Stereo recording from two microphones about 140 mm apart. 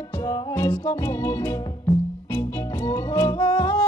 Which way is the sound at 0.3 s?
20° left (ahead or behind).